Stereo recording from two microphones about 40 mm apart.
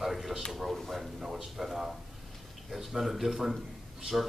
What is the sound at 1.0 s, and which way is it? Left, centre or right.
A man's voice, centre.